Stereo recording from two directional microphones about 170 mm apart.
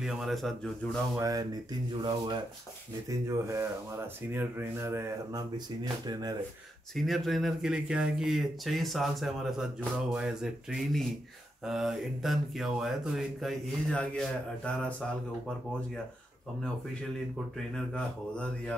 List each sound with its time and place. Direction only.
0.0 s speech: centre (ahead or behind)
1.1 s a sound: 20° right (ahead or behind)
3.1 s speech: 15° right (ahead or behind)
6.0 s a sound: 20° right (ahead or behind)
7.0 s speech: centre (ahead or behind)
17.7 s speech: 5° left (ahead or behind)